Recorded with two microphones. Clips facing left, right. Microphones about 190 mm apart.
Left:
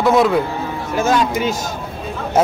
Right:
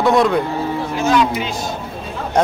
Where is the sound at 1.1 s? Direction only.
45° left (ahead or behind).